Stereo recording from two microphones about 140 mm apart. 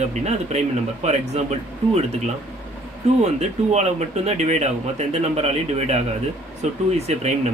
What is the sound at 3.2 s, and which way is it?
Speech, 50° right (ahead or behind).